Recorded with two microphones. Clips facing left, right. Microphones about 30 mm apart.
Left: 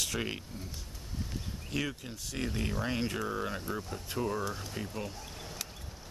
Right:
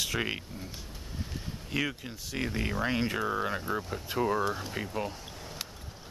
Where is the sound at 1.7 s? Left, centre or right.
Centre.